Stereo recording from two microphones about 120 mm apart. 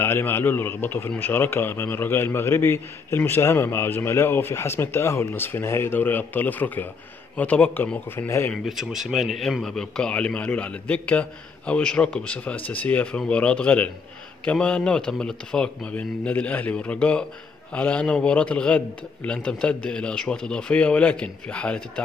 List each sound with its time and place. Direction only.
0.0 s a man's voice: 20° left (ahead or behind)
8.6 s a man's voice: centre (ahead or behind)